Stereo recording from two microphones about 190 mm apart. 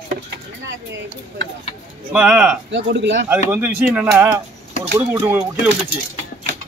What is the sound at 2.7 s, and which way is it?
Speech, 65° right (ahead or behind).